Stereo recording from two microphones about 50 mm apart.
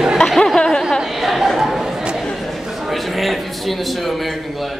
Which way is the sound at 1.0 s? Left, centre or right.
Centre.